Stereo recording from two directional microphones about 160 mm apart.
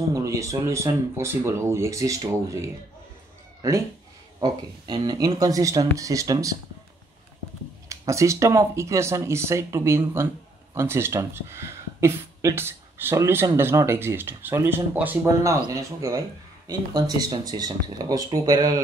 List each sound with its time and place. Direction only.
0.1 s speech: 20° right (ahead or behind)
3.6 s speech: 20° right (ahead or behind)
7.9 s speech: 20° right (ahead or behind)